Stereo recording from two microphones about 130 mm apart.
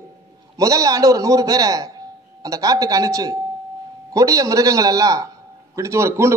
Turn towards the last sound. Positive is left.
turn(degrees=-20)  # may be behind; listen again after turning